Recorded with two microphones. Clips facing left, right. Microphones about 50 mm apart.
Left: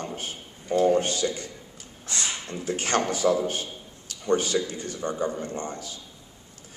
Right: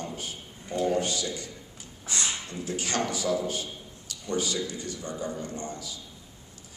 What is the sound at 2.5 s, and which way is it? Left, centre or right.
A man's voice, left.